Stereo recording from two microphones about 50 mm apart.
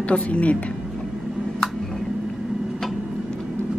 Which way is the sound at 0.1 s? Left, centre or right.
Left.